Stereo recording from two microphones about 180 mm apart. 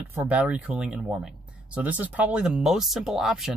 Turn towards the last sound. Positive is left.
turn(degrees=0)  # may be behind; listen again after turning